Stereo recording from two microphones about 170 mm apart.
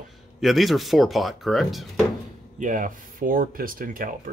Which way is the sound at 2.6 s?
50° right (ahead or behind).